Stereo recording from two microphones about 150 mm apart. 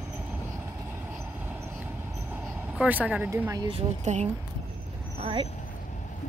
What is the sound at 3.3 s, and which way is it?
Speech, 25° right (ahead or behind).